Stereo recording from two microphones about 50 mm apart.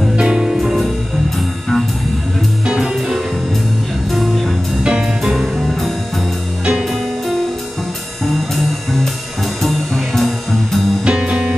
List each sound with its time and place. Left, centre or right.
0.1 s music: centre
2.6 s music: centre
4.8 s music: centre
5.3 s music: centre
11.1 s music: centre